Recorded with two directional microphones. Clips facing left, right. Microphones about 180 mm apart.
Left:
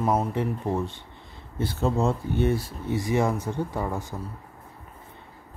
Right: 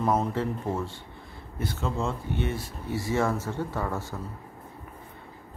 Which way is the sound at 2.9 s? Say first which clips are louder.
Left 2 dB; 15° left (ahead or behind).